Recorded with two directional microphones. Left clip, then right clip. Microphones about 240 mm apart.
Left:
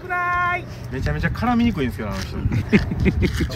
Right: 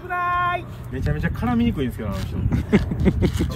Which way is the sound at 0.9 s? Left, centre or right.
Centre.